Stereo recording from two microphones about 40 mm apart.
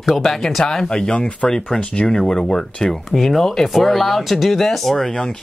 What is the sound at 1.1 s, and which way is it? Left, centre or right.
Speech, left.